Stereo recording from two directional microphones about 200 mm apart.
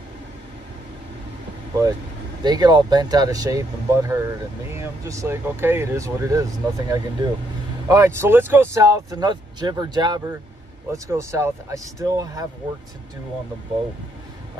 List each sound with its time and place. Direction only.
2.4 s speech: 20° right (ahead or behind)